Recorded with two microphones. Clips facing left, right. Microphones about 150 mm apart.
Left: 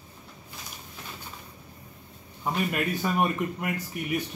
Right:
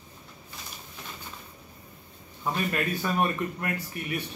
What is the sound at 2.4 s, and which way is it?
Speech, 10° left (ahead or behind).